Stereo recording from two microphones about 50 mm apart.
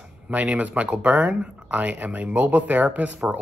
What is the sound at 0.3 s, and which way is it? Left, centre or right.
Speech, right.